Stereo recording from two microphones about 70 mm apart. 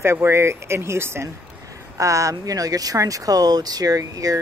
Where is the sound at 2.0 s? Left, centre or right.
Right.